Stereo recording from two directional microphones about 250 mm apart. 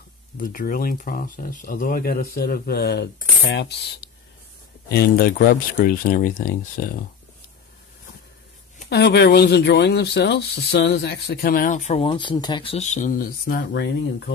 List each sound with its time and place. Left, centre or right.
0.4 s speech: left
8.8 s speech: left